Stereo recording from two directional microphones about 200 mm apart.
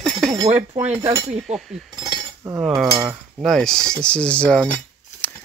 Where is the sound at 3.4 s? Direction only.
5° left (ahead or behind).